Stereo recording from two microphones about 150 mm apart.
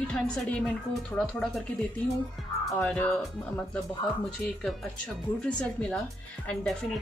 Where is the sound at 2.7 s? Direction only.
5° left (ahead or behind).